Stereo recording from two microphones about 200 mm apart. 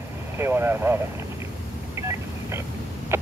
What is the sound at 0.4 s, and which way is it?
Speech, 10° right (ahead or behind).